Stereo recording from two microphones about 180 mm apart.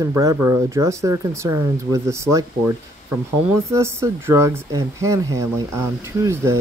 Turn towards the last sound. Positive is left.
turn(degrees=-15)  # may be behind; listen again after turning